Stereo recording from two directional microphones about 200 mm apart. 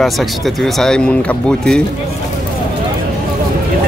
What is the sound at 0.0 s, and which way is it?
Speech, centre (ahead or behind).